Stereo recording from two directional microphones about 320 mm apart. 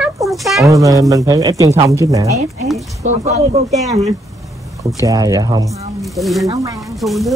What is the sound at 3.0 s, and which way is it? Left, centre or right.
Speech, right.